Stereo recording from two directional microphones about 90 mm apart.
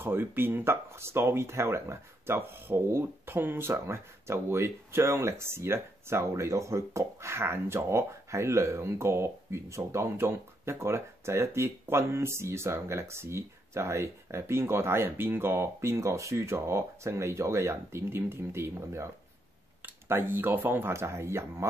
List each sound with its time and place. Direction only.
0.0 s speech: 25° right (ahead or behind)